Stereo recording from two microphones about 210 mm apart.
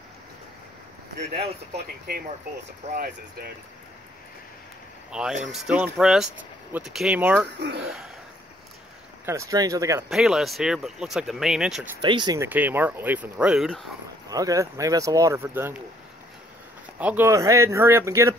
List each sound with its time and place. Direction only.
1.8 s speech: 50° right (ahead or behind)
5.1 s speech: 5° right (ahead or behind)
9.2 s speech: 15° right (ahead or behind)
10.0 s speech: centre (ahead or behind)
12.0 s speech: 20° right (ahead or behind)
12.4 s speech: 10° right (ahead or behind)
14.3 s speech: 15° right (ahead or behind)
17.0 s speech: 10° right (ahead or behind)